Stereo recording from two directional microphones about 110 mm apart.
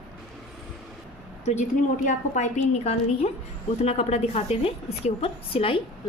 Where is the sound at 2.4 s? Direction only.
80° left; by 5.7 s 60° left (ahead or behind).